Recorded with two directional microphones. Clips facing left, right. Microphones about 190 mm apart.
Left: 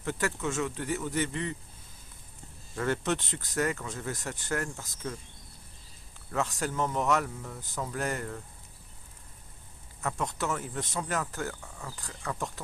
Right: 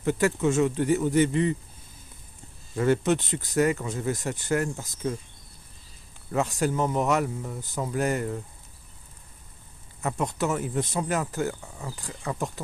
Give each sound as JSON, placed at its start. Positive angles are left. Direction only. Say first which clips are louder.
{"t": 0.0, "sound": "speech", "louder": "right 8 dB", "side_deg": -15}
{"t": 2.7, "sound": "speech", "louder": "right 7 dB", "side_deg": -15}
{"t": 6.3, "sound": "speech", "louder": "right 6 dB", "side_deg": -15}
{"t": 10.0, "sound": "speech", "louder": "right 5 dB", "side_deg": -15}